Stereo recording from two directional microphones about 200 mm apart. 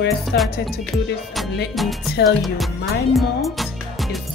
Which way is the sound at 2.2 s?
Centre (ahead or behind).